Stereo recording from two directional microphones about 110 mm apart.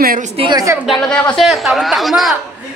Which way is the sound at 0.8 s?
Centre (ahead or behind).